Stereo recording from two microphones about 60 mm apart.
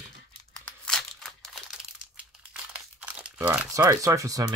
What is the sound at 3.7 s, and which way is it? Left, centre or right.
Speech, right.